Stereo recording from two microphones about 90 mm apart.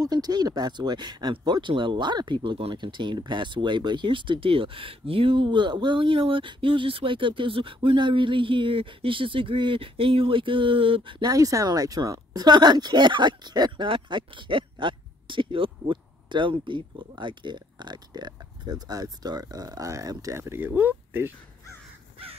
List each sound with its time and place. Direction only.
0.0 s speech: 50° right (ahead or behind); by 11.2 s 75° right (ahead or behind)
11.2 s speech: 40° right (ahead or behind); by 13.8 s 55° right (ahead or behind)
13.8 s speech: 70° right (ahead or behind); by 21.3 s 20° right (ahead or behind)